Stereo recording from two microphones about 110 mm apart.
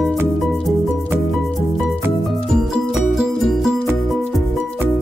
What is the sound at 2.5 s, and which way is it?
Music, 5° right (ahead or behind).